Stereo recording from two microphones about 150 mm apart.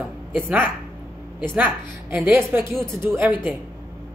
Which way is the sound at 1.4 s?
10° right (ahead or behind).